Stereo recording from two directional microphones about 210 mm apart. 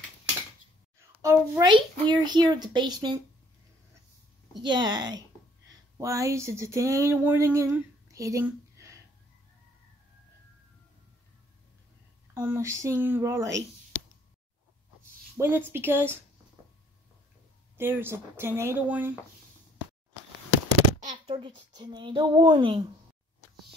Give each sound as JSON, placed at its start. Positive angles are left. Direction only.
{"t": 1.1, "sound": "a child's voice", "side_deg": -15}
{"t": 4.6, "sound": "a woman's voice", "side_deg": -20}
{"t": 5.9, "sound": "a sound", "side_deg": -15}
{"t": 12.4, "sound": "speech", "side_deg": -10}
{"t": 15.3, "sound": "speech", "side_deg": -10}
{"t": 17.7, "sound": "speech", "side_deg": -10}
{"t": 21.0, "sound": "a sound", "side_deg": -35}
{"t": 21.7, "sound": "a woman's voice", "side_deg": -20}